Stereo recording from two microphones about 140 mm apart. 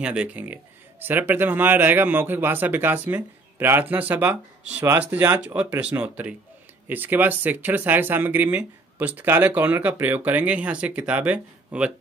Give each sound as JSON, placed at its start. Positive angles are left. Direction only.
{"t": 0.0, "sound": "speech", "side_deg": -10}